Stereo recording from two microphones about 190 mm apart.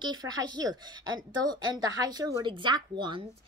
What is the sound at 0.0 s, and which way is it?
Speech, 20° right (ahead or behind).